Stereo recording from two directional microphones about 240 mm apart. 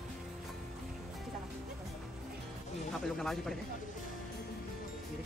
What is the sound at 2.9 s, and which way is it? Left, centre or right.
Speech, centre.